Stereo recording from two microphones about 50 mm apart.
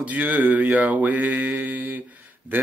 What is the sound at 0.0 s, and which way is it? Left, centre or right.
Speech, right.